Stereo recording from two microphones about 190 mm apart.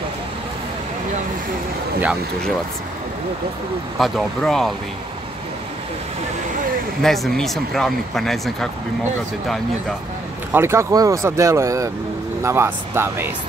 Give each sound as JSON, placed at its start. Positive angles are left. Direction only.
{"t": 4.0, "sound": "speech", "side_deg": 0}
{"t": 7.0, "sound": "speech", "side_deg": 0}
{"t": 10.5, "sound": "speech", "side_deg": -15}